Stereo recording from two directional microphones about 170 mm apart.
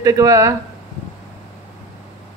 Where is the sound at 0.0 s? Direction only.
20° right (ahead or behind).